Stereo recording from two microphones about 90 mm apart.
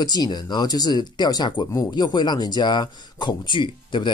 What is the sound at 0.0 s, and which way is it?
Speech, 50° left (ahead or behind).